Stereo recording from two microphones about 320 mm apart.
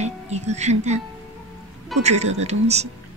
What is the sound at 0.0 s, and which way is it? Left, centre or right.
Speech, right.